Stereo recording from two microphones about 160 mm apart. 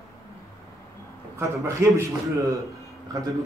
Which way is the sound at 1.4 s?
15° right (ahead or behind).